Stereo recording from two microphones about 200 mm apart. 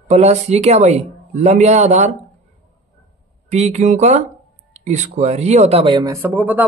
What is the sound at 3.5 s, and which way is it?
Speech, 35° right (ahead or behind).